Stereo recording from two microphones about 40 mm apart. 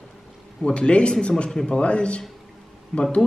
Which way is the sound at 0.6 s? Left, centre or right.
Left.